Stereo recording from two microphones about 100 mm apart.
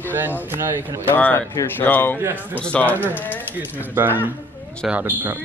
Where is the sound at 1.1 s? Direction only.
15° left (ahead or behind).